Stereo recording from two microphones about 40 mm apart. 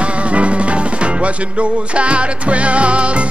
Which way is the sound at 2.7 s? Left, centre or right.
Right.